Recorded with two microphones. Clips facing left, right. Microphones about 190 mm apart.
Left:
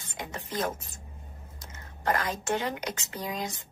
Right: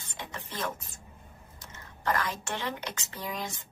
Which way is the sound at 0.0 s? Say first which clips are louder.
Left 3 dB; 45° left (ahead or behind).